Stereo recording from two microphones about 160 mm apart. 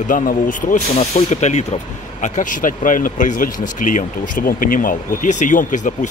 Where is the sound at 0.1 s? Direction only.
55° left (ahead or behind).